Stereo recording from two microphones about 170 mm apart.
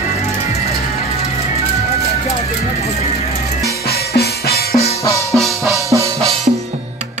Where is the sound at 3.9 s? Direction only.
65° left (ahead or behind).